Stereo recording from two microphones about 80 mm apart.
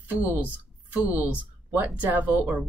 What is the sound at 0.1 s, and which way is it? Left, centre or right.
Speech, centre.